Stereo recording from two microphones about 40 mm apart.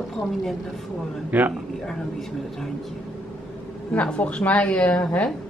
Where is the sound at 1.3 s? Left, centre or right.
Right.